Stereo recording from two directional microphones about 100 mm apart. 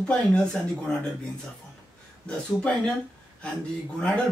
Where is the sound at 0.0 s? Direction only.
10° left (ahead or behind).